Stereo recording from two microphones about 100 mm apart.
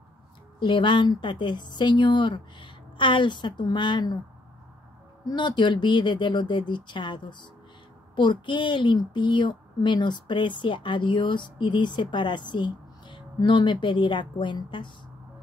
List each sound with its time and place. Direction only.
0.6 s speech: 55° left (ahead or behind)
5.2 s speech: 50° left (ahead or behind)